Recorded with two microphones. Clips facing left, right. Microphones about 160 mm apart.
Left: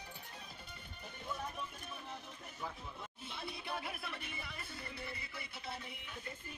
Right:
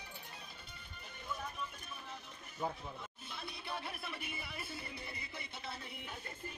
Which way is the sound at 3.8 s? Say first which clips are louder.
Even; centre (ahead or behind).